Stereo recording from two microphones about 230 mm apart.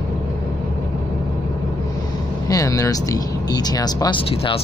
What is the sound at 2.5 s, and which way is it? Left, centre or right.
Speech, centre.